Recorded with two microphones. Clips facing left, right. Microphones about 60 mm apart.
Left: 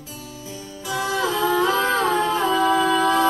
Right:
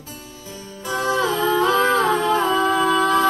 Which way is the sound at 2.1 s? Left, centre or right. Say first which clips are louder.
Right 2 dB; right.